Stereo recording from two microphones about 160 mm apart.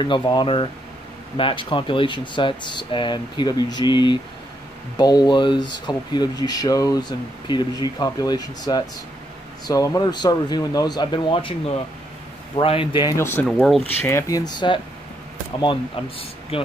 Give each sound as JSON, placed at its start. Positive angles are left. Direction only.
{"t": 0.0, "sound": "speech", "side_deg": 30}
{"t": 12.5, "sound": "speech", "side_deg": 30}
{"t": 13.1, "sound": "speech", "side_deg": 15}
{"t": 13.5, "sound": "speech", "side_deg": 0}
{"t": 14.0, "sound": "speech", "side_deg": 20}